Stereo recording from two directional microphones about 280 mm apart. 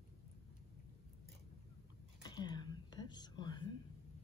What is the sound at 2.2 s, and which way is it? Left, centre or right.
Whispering, centre.